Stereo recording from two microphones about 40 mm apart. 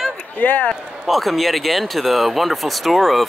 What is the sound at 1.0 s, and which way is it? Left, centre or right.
Speech, centre.